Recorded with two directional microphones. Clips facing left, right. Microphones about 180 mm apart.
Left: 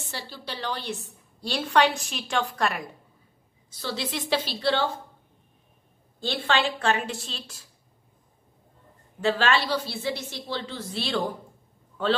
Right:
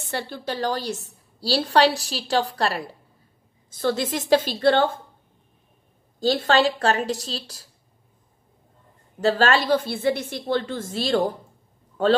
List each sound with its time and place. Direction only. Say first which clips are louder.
0.1 s a woman's voice: right 9 dB; 55° right (ahead or behind); by 3.0 s 30° right (ahead or behind)
3.7 s a woman's voice: right 8 dB; 50° right (ahead or behind)
6.1 s a woman's voice: right 7 dB; 40° right (ahead or behind)
9.2 s a woman's voice: right 4 dB; 40° right (ahead or behind)